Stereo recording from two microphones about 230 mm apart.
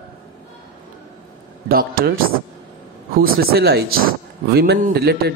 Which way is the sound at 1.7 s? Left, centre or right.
Right.